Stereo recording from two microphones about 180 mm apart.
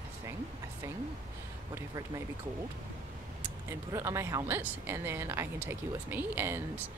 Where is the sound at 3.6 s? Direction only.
15° right (ahead or behind).